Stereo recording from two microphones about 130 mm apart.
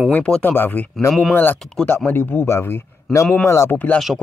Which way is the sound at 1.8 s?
15° left (ahead or behind).